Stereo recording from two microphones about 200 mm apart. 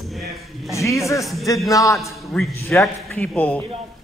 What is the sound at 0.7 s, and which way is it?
A man's voice, 15° left (ahead or behind).